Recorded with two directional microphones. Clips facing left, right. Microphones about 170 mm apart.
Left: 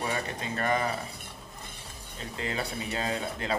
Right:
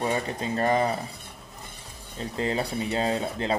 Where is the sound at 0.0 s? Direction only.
30° right (ahead or behind).